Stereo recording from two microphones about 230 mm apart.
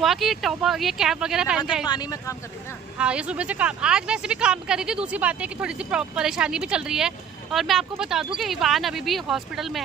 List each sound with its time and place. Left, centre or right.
0.0 s a woman's voice: centre
1.9 s speech: centre
3.0 s a woman's voice: centre